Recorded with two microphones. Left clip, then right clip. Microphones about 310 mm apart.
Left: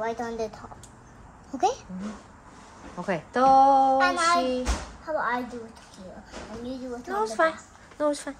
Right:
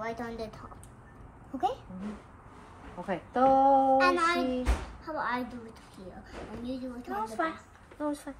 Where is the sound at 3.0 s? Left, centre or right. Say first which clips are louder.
Left 4 dB; left.